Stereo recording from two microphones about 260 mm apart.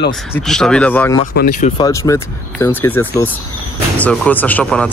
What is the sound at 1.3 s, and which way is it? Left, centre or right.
Speech, left.